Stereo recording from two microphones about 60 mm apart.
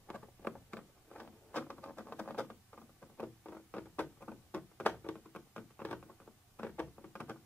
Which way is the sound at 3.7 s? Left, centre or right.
Left.